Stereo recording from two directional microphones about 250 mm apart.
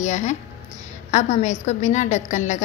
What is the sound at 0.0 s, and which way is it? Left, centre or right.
A woman's voice, left.